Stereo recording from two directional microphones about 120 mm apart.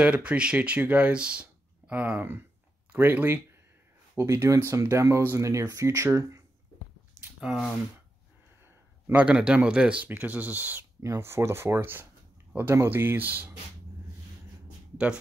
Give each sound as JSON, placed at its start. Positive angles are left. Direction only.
{"t": 0.0, "sound": "speech", "side_deg": -10}
{"t": 7.3, "sound": "speech", "side_deg": -5}
{"t": 9.0, "sound": "speech", "side_deg": -10}